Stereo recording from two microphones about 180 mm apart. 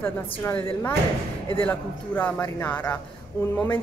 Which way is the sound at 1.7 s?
10° left (ahead or behind).